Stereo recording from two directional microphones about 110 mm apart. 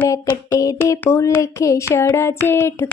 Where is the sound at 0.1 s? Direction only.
30° left (ahead or behind).